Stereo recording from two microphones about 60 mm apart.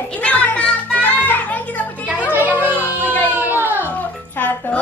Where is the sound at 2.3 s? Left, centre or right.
Right.